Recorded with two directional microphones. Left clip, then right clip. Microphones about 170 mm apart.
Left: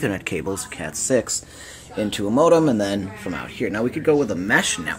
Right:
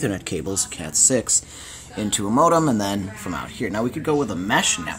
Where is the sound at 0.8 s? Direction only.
45° right (ahead or behind).